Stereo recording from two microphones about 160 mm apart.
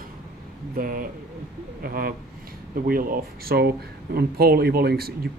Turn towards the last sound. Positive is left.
turn(degrees=-75)  # may be behind; listen again after turning